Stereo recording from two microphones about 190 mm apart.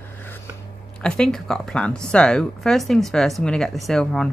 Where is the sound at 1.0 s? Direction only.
5° left (ahead or behind).